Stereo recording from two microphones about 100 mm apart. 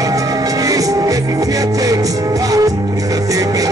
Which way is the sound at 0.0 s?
35° right (ahead or behind).